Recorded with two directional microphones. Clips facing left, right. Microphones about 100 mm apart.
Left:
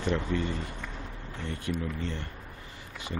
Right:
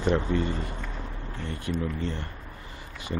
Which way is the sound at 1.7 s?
45° right (ahead or behind).